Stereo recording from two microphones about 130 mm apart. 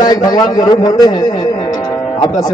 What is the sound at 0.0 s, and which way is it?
A man's voice, 30° left (ahead or behind).